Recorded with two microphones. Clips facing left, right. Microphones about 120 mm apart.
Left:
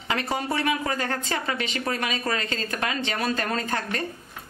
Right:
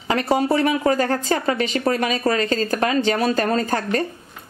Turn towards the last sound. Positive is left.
turn(degrees=-40)  # may be behind; listen again after turning